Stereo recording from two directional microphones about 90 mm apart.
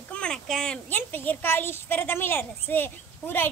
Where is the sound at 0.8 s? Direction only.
20° left (ahead or behind).